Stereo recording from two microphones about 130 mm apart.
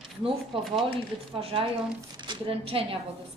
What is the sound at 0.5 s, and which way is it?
A woman's voice, 45° right (ahead or behind).